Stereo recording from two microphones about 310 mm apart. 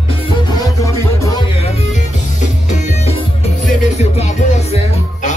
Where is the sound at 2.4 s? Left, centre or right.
Left.